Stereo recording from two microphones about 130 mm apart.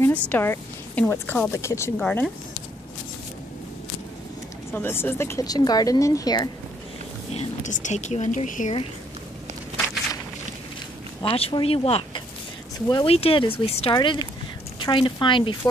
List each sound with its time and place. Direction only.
0.0 s a woman's voice: 15° left (ahead or behind)
2.0 s speech: 5° left (ahead or behind)
4.6 s speech: 15° left (ahead or behind)
5.4 s a woman's voice: 30° left (ahead or behind)
7.3 s speech: 70° left (ahead or behind)
11.2 s speech: 45° left (ahead or behind)
13.9 s speech: 35° left (ahead or behind)